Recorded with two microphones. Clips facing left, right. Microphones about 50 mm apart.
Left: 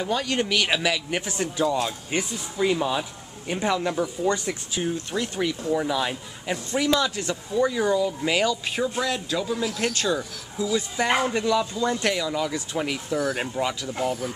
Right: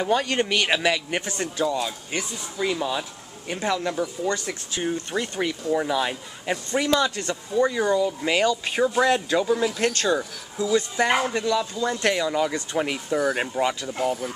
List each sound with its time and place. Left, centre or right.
0.0 s speech: centre
5.1 s speech: right
5.7 s speech: centre
12.2 s speech: centre